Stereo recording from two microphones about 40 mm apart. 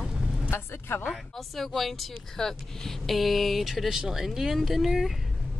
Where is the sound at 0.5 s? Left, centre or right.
Left.